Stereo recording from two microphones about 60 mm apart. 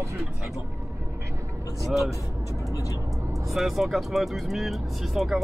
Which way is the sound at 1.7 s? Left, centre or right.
Centre.